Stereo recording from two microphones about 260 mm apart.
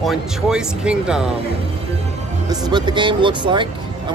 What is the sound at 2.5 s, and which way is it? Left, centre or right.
Speech, centre.